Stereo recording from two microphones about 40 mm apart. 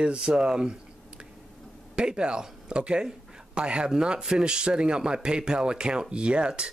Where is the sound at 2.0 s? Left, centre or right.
Right.